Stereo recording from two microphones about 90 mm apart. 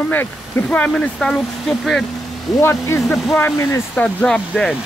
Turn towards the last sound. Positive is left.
turn(degrees=10)  # may be behind; listen again after turning